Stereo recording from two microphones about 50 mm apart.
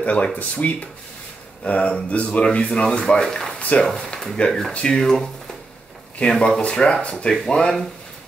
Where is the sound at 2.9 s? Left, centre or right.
Centre.